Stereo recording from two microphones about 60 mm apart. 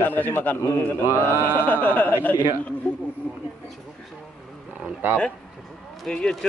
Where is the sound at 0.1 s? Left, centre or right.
Left.